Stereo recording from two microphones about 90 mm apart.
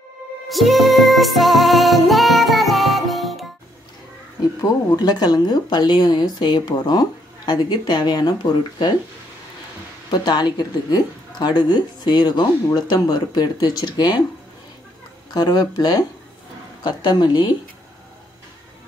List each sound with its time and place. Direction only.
0.5 s music: centre (ahead or behind)
4.6 s speech: 45° left (ahead or behind)
10.1 s speech: 50° left (ahead or behind)
15.3 s a woman's voice: 50° left (ahead or behind)